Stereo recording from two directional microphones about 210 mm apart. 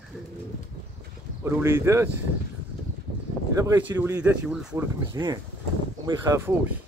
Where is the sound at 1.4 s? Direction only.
15° right (ahead or behind).